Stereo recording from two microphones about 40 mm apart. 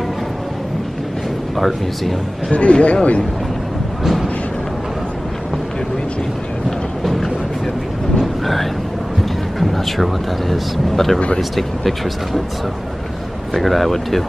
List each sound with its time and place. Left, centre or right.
1.6 s speech: centre
2.5 s speech: left
4.0 s a sound: centre
8.2 s a sound: centre
9.6 s music: centre
10.5 s speech: centre
13.5 s speech: centre